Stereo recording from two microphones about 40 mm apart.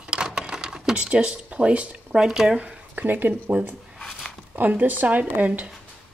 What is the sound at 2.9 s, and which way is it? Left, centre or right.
Speech, right.